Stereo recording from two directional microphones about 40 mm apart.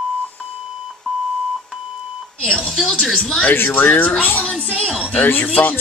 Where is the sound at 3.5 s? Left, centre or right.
Left.